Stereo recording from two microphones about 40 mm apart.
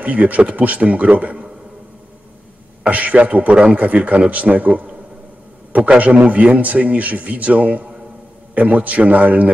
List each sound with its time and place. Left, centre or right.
0.0 s a man's voice: right
2.8 s a man's voice: right
5.9 s a man's voice: right